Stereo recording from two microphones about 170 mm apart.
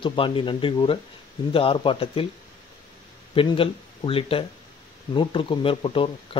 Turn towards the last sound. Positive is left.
turn(degrees=30)  # may be behind; listen again after turning